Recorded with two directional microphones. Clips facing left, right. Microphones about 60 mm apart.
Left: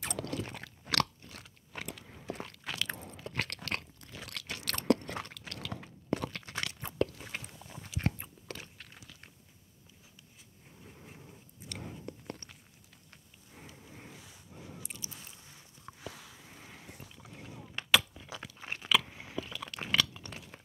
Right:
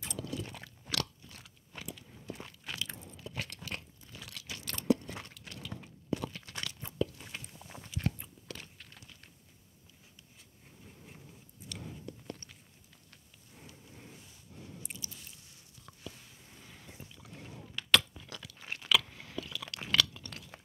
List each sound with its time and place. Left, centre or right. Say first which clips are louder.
0.0 s chewing: left 3 dB; left
0.5 s crunch: left 5 dB; left
1.8 s biting: left 3 dB; left
2.5 s crunch: left 4 dB; left
6.6 s biting: left 2 dB; left
8.0 s crunch: left 2 dB; left
11.7 s biting: left 2 dB; left
13.8 s a sound: left 2 dB; left
14.1 s a sound: left 2 dB; left
15.9 s a sound: left 6 dB; left
16.4 s vehicle: left 3 dB; left
17.9 s chewing: even; centre
18.8 s biting: left 1 dB; centre
19.0 s chewing: left 2 dB; centre